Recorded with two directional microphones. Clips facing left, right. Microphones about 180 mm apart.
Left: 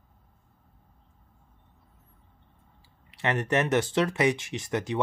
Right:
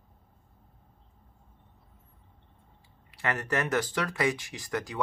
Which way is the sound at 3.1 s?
25° left (ahead or behind).